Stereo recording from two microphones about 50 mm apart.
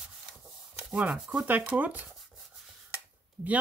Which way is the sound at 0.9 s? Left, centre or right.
Right.